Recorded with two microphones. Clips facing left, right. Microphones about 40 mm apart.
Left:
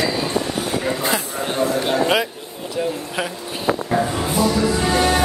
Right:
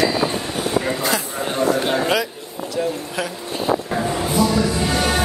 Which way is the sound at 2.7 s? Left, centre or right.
Centre.